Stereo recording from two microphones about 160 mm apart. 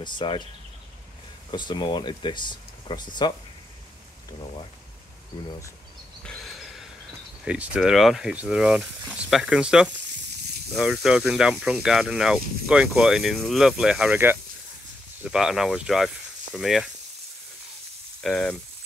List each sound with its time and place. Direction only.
0.0 s speech: 30° left (ahead or behind)
1.5 s speech: 30° left (ahead or behind)
6.2 s a sound: 5° left (ahead or behind)
7.4 s speech: 10° right (ahead or behind)
18.2 s speech: 5° left (ahead or behind)